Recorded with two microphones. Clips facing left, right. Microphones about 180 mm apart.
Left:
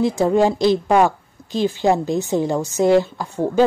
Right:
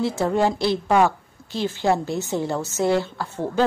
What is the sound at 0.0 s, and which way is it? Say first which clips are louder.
A woman's voice: left 5 dB; 15° left (ahead or behind).